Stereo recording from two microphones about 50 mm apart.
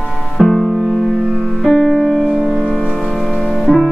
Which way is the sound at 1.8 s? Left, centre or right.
Centre.